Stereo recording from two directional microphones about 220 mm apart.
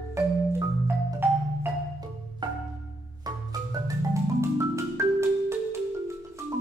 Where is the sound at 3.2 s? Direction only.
15° right (ahead or behind).